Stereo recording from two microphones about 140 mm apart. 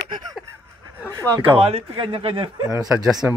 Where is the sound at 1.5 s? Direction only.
45° right (ahead or behind).